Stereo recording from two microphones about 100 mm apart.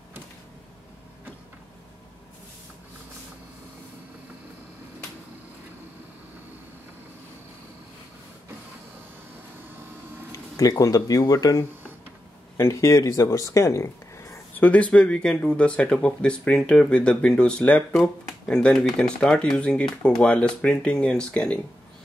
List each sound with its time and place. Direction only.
10.3 s speech: 35° left (ahead or behind); by 21.5 s 10° left (ahead or behind)